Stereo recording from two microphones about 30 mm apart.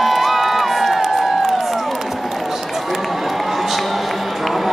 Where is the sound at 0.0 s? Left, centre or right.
Centre.